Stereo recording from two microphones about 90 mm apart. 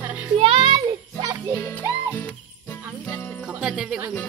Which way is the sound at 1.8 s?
20° right (ahead or behind).